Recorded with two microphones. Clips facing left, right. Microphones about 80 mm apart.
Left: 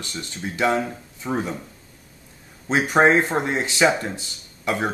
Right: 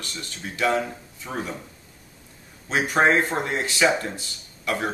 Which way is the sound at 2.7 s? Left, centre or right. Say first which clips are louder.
Left 3 dB; left.